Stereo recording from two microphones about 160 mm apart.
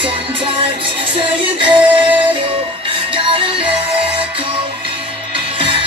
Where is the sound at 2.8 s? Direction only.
35° right (ahead or behind).